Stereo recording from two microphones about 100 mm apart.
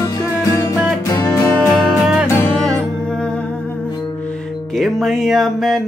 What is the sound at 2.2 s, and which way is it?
Music, 25° left (ahead or behind).